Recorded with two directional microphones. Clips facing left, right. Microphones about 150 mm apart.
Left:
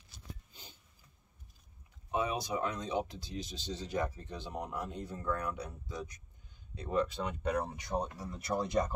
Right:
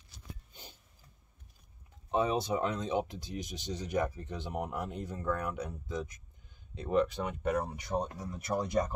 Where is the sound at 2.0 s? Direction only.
30° right (ahead or behind).